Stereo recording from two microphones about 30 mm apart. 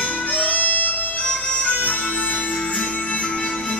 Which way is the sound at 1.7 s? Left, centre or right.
Left.